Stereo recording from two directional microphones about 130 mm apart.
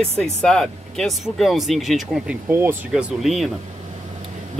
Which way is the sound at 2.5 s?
15° right (ahead or behind).